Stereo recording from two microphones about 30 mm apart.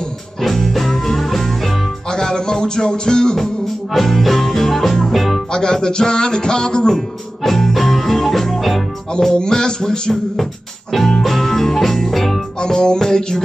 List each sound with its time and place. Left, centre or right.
0.4 s music: centre
2.0 s music: left
3.3 s music: centre
5.1 s music: centre
5.5 s speech: left
6.9 s music: centre
9.2 s speech: centre
10.9 s music: centre
12.5 s speech: left